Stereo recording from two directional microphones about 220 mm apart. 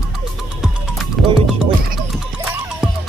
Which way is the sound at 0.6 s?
Centre (ahead or behind).